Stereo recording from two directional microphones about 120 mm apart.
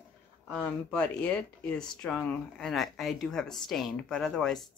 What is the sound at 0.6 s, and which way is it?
Speech, 10° left (ahead or behind).